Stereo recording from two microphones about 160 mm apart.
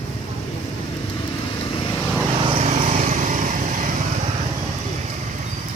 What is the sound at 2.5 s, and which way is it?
Vehicle, 45° right (ahead or behind).